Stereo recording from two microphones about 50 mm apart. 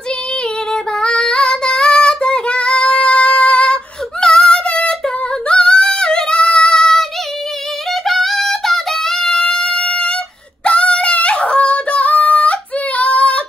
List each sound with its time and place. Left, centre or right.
0.9 s female singing: centre
5.0 s singing: centre
7.9 s music: centre; by 10.1 s left
10.6 s female singing: left